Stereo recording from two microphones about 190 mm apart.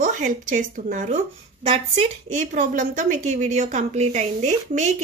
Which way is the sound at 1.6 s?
30° right (ahead or behind).